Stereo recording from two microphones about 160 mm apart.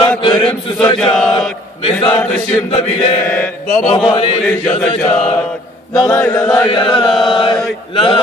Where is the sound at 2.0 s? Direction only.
5° left (ahead or behind).